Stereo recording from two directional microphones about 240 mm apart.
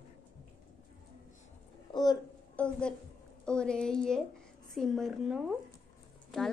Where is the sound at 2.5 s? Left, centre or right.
Centre.